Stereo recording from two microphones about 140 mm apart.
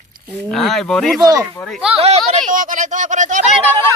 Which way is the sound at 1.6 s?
5° right (ahead or behind).